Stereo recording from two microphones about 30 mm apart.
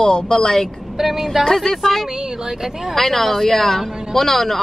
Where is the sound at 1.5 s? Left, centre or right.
Centre.